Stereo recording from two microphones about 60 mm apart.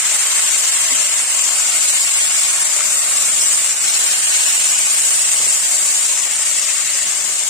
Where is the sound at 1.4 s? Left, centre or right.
Centre.